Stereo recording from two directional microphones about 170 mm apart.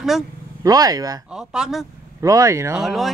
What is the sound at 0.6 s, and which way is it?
Speech, 20° right (ahead or behind).